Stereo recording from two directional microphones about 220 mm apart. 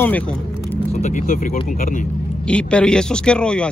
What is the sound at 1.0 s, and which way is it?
Speech, 35° left (ahead or behind).